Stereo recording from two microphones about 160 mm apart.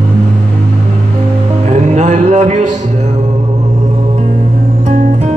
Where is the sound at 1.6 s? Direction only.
45° right (ahead or behind).